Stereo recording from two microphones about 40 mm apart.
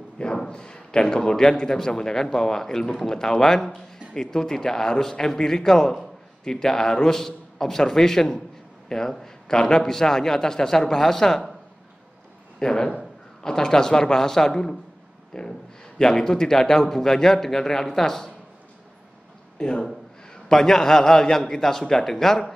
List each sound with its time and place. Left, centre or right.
0.5 s speech: left
12.5 s speech: centre
19.6 s a man's voice: left